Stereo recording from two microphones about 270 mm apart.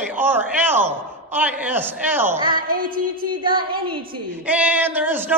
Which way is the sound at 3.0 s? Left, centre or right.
Right.